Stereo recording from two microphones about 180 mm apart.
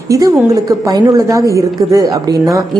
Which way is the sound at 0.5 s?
20° right (ahead or behind).